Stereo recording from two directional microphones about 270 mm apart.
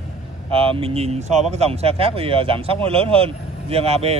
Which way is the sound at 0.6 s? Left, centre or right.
Right.